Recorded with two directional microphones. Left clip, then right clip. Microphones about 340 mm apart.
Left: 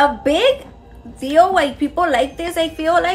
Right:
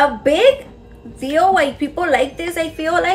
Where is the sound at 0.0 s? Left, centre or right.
Centre.